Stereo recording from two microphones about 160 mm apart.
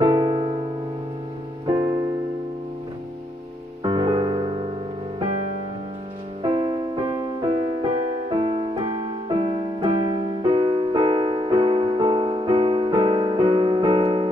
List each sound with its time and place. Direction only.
0.0 s piano: 25° right (ahead or behind)
1.7 s music: 25° right (ahead or behind)
3.8 s music: 30° right (ahead or behind)
6.4 s music: 30° right (ahead or behind)